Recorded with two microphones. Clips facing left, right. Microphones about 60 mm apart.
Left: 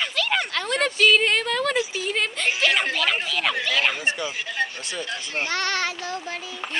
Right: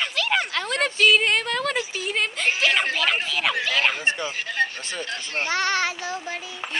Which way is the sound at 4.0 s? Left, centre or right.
Right.